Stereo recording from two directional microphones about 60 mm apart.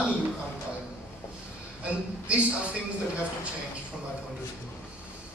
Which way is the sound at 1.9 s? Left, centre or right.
Right.